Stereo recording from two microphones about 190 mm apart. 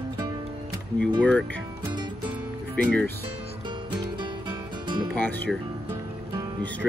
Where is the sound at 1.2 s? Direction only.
5° left (ahead or behind).